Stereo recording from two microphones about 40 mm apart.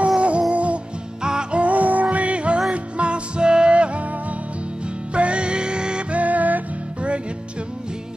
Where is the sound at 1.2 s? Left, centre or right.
Right.